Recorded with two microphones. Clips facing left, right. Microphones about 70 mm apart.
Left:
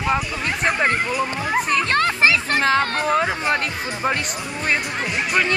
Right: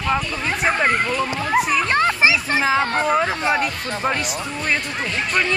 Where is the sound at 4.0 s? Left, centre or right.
Centre.